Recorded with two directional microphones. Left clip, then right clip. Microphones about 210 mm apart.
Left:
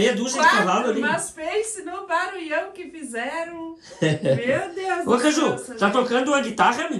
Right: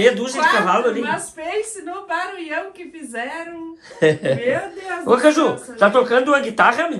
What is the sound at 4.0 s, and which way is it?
Speech, 15° left (ahead or behind).